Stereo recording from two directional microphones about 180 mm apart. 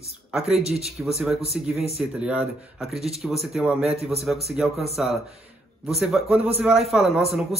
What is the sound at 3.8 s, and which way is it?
Speech, 35° right (ahead or behind).